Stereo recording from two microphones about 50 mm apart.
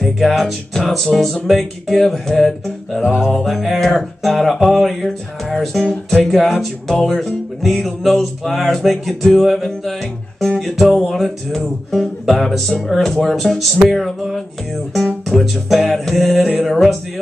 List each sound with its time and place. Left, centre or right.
0.0 s music: centre
3.0 s music: centre
3.3 s music: centre